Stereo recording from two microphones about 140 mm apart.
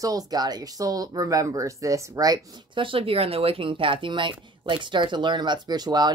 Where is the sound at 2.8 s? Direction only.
40° right (ahead or behind).